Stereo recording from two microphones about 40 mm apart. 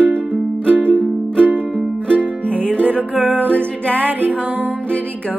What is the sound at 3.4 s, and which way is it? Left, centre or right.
Music, left.